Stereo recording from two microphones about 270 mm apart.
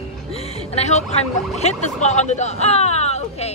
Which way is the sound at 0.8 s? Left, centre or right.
Left.